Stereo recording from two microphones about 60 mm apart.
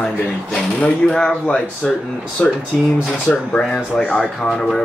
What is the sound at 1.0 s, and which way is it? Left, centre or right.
Speech, centre.